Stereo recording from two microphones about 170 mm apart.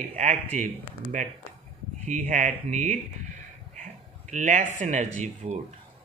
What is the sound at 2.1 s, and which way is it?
Speech, 50° right (ahead or behind).